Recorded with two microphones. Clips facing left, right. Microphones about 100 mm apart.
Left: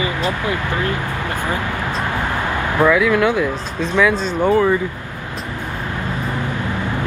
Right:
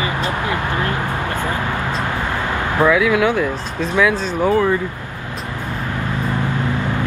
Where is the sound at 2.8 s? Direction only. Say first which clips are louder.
Even; centre (ahead or behind).